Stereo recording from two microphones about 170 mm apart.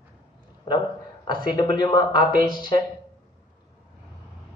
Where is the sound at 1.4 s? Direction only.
25° left (ahead or behind).